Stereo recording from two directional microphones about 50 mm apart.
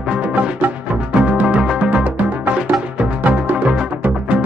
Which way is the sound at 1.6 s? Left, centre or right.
Centre.